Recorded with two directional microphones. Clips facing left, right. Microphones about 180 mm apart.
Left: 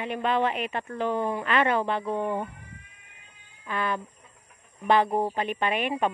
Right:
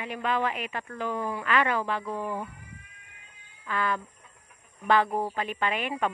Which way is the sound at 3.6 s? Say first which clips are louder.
Even; 20° left (ahead or behind).